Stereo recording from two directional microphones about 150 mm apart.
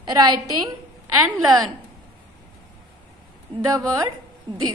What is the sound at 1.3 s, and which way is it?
Speech, 25° right (ahead or behind).